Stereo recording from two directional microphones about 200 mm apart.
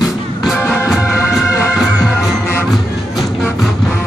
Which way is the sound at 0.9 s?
5° right (ahead or behind).